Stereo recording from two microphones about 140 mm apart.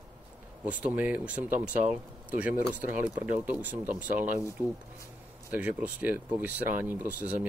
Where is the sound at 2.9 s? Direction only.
65° left (ahead or behind).